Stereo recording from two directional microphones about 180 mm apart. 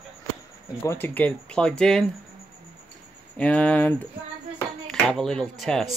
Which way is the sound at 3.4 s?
5° left (ahead or behind).